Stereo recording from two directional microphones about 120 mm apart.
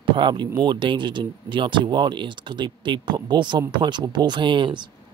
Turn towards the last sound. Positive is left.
turn(degrees=-40)  # may be behind; listen again after turning